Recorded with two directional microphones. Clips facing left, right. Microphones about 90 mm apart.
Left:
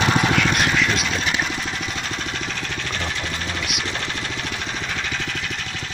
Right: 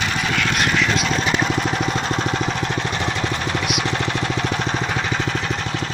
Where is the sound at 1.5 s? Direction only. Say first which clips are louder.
Right 7 dB; 45° right (ahead or behind).